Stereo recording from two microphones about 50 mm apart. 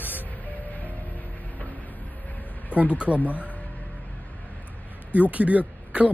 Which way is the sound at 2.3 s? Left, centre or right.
Left.